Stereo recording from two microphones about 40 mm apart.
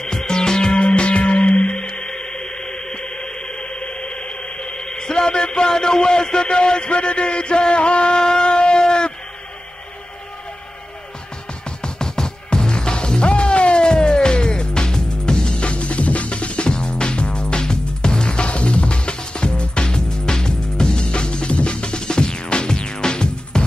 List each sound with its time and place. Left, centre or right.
0.0 s music: centre
4.7 s a sound: centre
11.6 s music: centre